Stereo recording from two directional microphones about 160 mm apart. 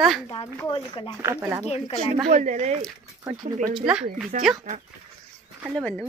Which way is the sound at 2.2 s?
50° right (ahead or behind).